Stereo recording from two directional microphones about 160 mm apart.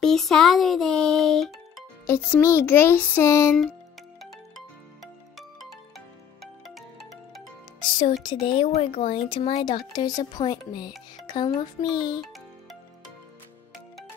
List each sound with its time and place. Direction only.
0.0 s speech: 5° left (ahead or behind)
2.0 s music: 15° left (ahead or behind)
5.6 s ringtone: centre (ahead or behind)
6.6 s music: centre (ahead or behind)
8.2 s speech: 30° left (ahead or behind)
9.9 s speech: 25° left (ahead or behind)
12.2 s music: centre (ahead or behind)